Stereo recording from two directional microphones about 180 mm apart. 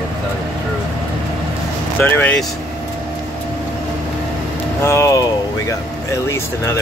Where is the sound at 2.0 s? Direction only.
10° left (ahead or behind).